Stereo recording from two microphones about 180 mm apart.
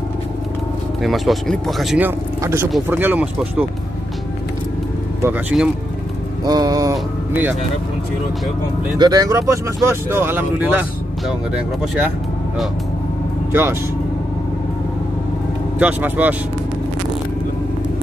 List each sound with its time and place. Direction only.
1.0 s speech: centre (ahead or behind)
5.5 s speech: 5° right (ahead or behind)
6.4 s speech: 20° right (ahead or behind)
8.9 s speech: 20° right (ahead or behind)
13.5 s speech: 10° right (ahead or behind)
15.8 s speech: 10° right (ahead or behind)